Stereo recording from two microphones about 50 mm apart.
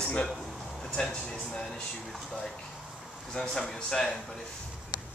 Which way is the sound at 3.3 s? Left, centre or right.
Centre.